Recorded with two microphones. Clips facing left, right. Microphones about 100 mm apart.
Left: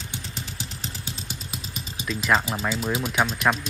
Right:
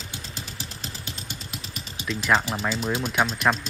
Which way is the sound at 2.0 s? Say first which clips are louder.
Even; centre (ahead or behind).